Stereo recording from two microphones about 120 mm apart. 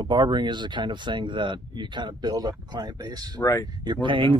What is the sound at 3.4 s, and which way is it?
Speech, 25° left (ahead or behind).